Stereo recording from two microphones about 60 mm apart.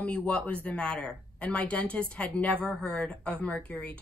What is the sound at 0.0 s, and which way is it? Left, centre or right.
A woman's voice, left.